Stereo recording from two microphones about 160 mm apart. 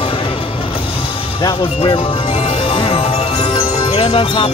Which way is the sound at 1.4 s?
30° left (ahead or behind).